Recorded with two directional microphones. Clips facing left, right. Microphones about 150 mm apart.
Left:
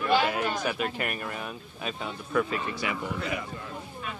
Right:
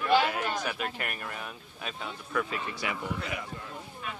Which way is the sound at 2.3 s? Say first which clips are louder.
Left 5 dB; 25° left (ahead or behind).